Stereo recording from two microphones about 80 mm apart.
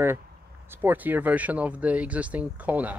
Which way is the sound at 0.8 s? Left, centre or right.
Right.